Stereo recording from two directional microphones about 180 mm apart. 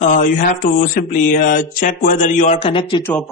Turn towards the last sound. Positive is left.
turn(degrees=25)  # may be behind; listen again after turning